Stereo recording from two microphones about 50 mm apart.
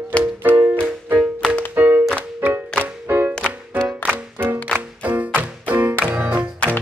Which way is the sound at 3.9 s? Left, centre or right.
Right.